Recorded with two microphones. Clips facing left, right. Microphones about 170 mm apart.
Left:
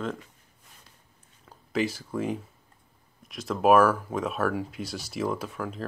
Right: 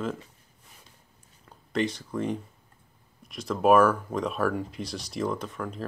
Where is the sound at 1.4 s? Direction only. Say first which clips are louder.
Even; centre (ahead or behind).